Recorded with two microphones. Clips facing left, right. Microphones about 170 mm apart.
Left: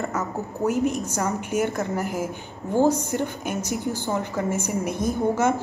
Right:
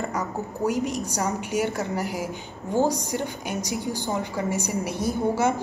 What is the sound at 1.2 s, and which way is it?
Speech, 55° left (ahead or behind).